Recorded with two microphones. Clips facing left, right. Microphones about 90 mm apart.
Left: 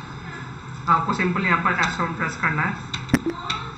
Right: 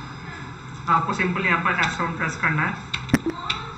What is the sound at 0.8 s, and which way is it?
Speech, 5° left (ahead or behind).